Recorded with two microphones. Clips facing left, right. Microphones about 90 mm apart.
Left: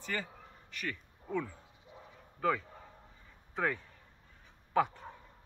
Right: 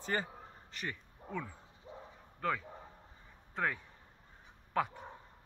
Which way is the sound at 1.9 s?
30° right (ahead or behind).